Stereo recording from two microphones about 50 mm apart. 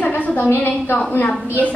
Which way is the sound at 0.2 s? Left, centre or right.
Left.